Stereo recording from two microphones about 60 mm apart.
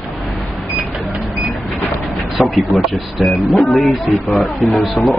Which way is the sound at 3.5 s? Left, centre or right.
Centre.